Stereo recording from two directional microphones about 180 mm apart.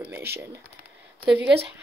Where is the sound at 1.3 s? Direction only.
70° right (ahead or behind).